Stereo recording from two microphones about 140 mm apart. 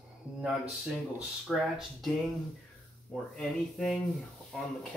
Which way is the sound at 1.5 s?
5° right (ahead or behind).